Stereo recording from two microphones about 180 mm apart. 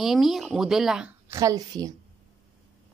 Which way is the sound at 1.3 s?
20° right (ahead or behind).